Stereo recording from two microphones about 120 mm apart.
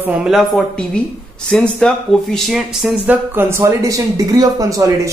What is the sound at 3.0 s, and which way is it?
Speech, 20° right (ahead or behind).